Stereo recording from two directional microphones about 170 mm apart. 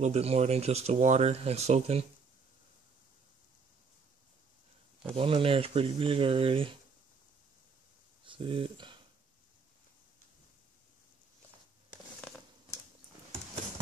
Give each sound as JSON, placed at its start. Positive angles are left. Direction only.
{"t": 0.0, "sound": "speech", "side_deg": -40}
{"t": 5.1, "sound": "speech", "side_deg": -35}
{"t": 8.3, "sound": "speech", "side_deg": -30}